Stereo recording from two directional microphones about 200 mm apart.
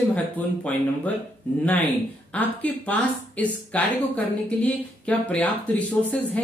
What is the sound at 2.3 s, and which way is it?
Speech, 5° left (ahead or behind).